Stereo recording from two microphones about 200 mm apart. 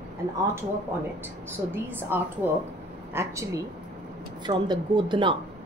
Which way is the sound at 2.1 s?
10° right (ahead or behind).